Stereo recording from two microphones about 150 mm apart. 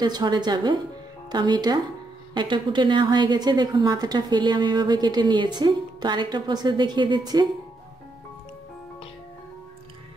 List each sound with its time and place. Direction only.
0.0 s a woman's voice: 30° right (ahead or behind)